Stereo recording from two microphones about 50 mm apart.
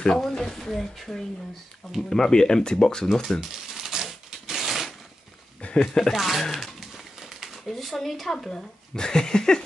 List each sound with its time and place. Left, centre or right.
0.3 s speech: centre
3.1 s typewriter: centre
5.6 s a sound: left
6.1 s speech: centre